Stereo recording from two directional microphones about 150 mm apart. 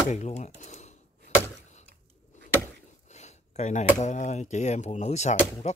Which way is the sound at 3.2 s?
50° left (ahead or behind).